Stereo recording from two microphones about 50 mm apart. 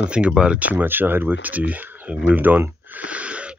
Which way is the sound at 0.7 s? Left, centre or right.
Right.